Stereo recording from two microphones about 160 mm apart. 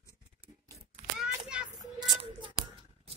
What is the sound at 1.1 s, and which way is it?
Child singing, 5° right (ahead or behind).